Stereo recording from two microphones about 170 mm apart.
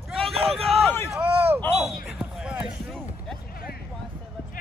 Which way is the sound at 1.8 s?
Centre (ahead or behind).